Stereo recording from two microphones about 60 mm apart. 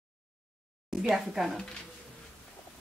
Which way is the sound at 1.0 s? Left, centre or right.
Centre.